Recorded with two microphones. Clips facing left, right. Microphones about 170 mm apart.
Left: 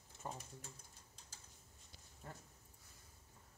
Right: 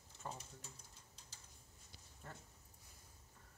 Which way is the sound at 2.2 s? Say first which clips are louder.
Left 1 dB; 10° left (ahead or behind).